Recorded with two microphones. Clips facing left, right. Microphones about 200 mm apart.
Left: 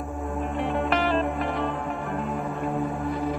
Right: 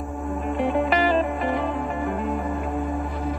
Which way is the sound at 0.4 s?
Centre (ahead or behind).